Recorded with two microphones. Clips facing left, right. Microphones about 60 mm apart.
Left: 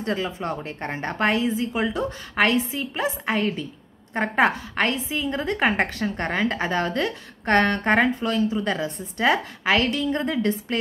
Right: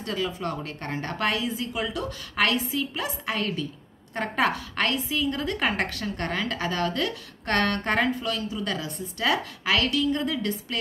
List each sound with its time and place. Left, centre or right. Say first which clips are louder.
0.0 s a woman's voice: left 3 dB; left